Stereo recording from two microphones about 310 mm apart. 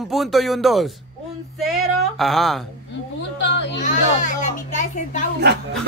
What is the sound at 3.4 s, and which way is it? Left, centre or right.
Baby cry, left.